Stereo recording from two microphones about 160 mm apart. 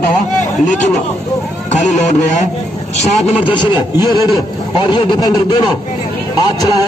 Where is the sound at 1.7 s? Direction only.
50° left (ahead or behind).